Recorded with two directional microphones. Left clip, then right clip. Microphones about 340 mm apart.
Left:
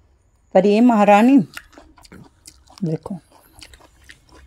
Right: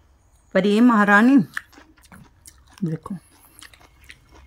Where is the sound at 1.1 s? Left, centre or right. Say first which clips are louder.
Left 2 dB; centre.